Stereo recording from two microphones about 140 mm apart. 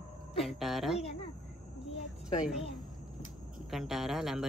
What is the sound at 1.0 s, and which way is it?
Speech, 45° left (ahead or behind).